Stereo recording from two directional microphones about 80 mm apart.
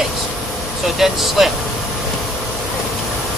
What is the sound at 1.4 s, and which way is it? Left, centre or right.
Speech, centre.